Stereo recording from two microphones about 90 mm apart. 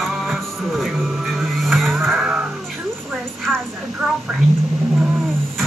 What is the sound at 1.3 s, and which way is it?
Vehicle, centre (ahead or behind).